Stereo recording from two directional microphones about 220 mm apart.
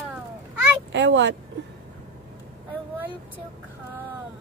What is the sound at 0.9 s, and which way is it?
Speech, 55° right (ahead or behind).